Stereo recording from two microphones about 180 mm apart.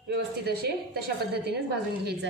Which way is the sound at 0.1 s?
60° right (ahead or behind).